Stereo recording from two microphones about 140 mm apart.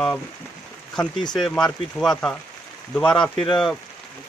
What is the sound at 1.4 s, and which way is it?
Speech, 5° left (ahead or behind).